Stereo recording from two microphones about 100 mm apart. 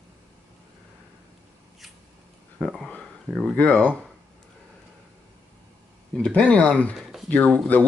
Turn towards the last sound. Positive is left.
turn(degrees=15)  # may be behind; listen again after turning